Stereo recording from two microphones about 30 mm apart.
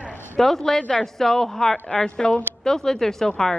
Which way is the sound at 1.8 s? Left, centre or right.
Left.